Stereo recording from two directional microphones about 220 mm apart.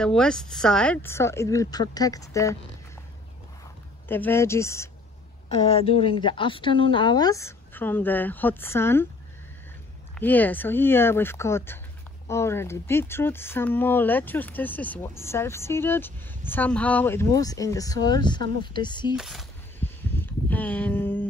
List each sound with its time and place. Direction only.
0.0 s speech: 5° left (ahead or behind)
4.1 s speech: 10° left (ahead or behind)
5.5 s speech: 25° left (ahead or behind)
10.1 s speech: 10° left (ahead or behind)
19.1 s a sound: centre (ahead or behind)